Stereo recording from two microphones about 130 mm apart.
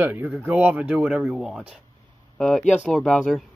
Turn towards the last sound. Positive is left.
turn(degrees=0)  # may be behind; listen again after turning